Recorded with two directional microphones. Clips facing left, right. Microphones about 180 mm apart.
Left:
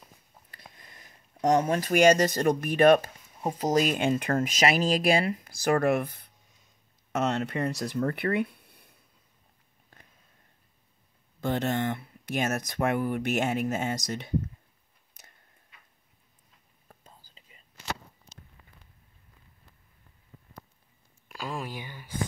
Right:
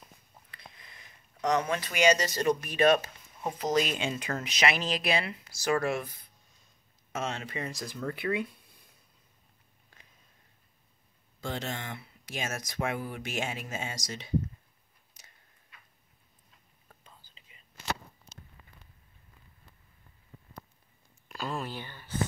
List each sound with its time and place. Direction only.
0.7 s speech: 40° left (ahead or behind)
3.4 s speech: 40° left (ahead or behind); by 8.8 s 60° left (ahead or behind)
11.4 s speech: 60° left (ahead or behind)
15.2 s a sound: 55° left (ahead or behind)
16.8 s whispering: 40° left (ahead or behind)
21.3 s a sound: 10° left (ahead or behind)